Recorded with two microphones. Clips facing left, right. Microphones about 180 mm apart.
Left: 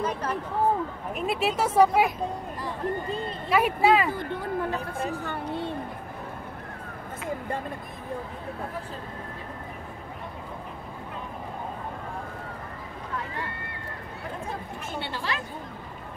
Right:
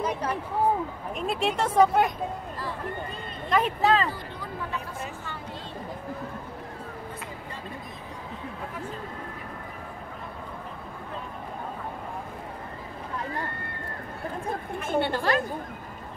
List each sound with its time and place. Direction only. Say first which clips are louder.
0.0 s a sound: even; 10° right (ahead or behind)
1.1 s speech: left 1 dB; 5° left (ahead or behind)
3.4 s speech: left 2 dB; 10° left (ahead or behind)
4.2 s a sound: left 7 dB; 55° left (ahead or behind)
7.2 s vehicle: left 9 dB; 50° left (ahead or behind)
14.8 s a woman's voice: right 8 dB; 50° right (ahead or behind)